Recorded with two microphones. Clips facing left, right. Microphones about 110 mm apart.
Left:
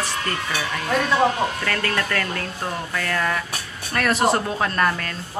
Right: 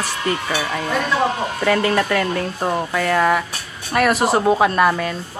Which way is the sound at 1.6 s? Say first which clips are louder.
Right 7 dB; 15° right (ahead or behind).